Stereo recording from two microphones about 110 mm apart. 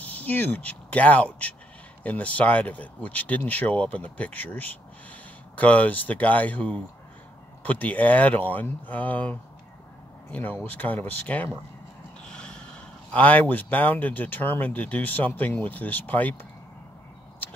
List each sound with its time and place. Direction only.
0.0 s speech: 15° left (ahead or behind)
12.3 s gasp: 10° left (ahead or behind)
13.1 s speech: 15° left (ahead or behind)